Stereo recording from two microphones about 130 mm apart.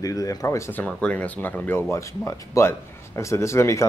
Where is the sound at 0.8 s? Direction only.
10° left (ahead or behind).